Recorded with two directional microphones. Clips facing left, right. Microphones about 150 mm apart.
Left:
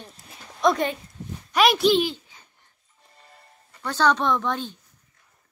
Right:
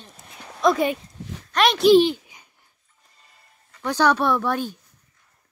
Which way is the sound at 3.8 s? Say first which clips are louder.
Right 2 dB; 10° right (ahead or behind).